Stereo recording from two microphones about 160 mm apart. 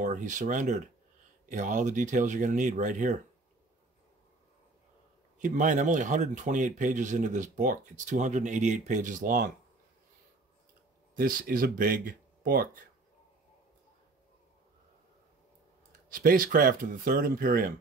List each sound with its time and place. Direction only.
0.0 s speech: 55° right (ahead or behind)
5.4 s speech: 50° right (ahead or behind)
11.1 s speech: 65° right (ahead or behind)
16.1 s speech: 65° right (ahead or behind)